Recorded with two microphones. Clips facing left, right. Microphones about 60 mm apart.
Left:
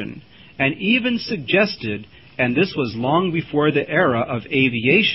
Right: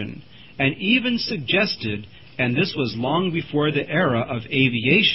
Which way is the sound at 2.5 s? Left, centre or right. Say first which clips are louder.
Left 3 dB; centre.